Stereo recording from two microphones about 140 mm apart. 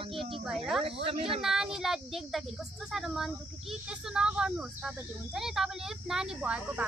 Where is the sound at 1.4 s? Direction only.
5° right (ahead or behind).